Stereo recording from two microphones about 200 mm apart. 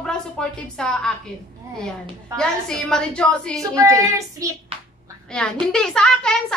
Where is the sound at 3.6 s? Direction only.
15° right (ahead or behind).